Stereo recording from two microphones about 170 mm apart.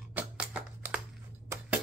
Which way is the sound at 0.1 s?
10° right (ahead or behind).